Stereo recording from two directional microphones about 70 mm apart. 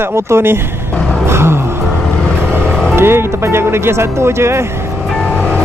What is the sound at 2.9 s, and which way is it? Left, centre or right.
Speech, right.